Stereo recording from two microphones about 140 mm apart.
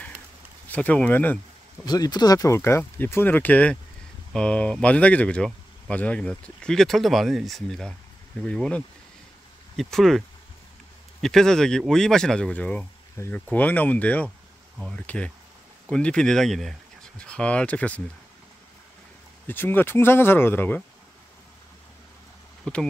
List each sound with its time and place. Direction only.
0.7 s speech: 10° left (ahead or behind)
1.9 s speech: 30° left (ahead or behind); by 18.0 s 10° left (ahead or behind)
19.4 s speech: 15° left (ahead or behind)
22.7 s speech: 5° left (ahead or behind)